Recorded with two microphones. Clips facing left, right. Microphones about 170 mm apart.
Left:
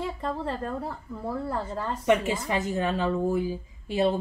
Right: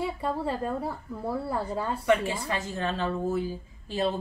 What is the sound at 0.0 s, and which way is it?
A woman's voice, 10° right (ahead or behind).